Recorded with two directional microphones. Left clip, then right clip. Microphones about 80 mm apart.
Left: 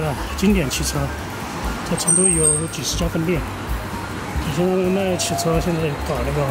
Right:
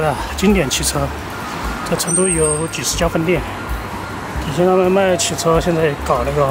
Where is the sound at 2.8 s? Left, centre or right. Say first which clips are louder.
Right 6 dB; right.